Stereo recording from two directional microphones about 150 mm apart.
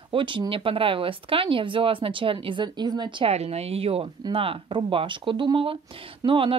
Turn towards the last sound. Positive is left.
turn(degrees=-35)  # may be behind; listen again after turning